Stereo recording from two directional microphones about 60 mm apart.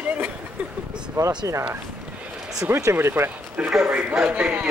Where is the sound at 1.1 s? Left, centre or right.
Right.